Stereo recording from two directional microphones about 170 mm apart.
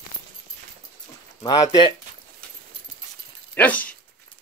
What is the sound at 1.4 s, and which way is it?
Speech, 25° left (ahead or behind).